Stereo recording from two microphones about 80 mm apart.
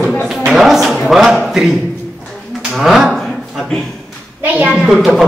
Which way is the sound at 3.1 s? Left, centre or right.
Centre.